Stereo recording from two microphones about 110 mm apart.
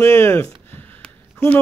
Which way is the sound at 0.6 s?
15° left (ahead or behind).